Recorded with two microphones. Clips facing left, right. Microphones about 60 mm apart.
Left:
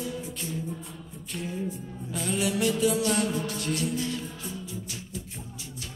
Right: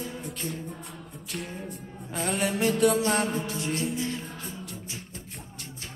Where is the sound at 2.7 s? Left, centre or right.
Right.